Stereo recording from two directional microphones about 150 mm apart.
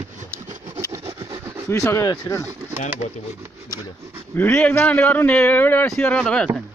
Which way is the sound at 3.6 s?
25° left (ahead or behind).